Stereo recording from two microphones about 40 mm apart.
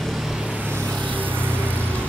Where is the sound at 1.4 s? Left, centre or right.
Right.